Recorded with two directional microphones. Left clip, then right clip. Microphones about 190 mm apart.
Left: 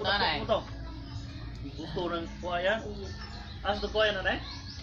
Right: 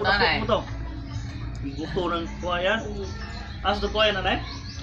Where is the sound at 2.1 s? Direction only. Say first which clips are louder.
Right 6 dB; 60° right (ahead or behind).